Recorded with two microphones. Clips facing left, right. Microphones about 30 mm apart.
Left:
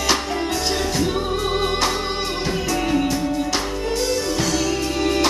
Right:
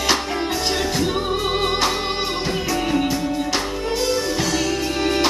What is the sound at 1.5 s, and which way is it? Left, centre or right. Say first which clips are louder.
Music: right 1 dB; centre.